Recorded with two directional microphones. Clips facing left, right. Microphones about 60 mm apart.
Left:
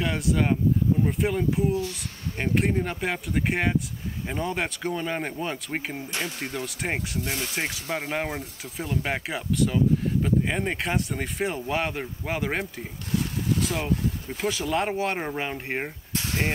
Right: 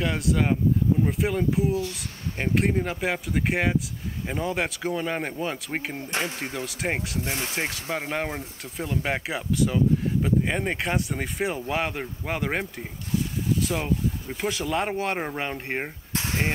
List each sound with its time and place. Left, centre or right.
0.0 s speech: centre
13.1 s a sound: left
13.7 s speech: centre